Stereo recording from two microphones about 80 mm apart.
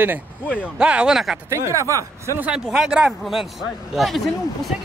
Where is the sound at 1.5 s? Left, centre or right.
Right.